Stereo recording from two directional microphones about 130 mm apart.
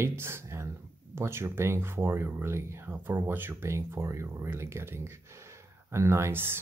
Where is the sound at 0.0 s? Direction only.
20° right (ahead or behind).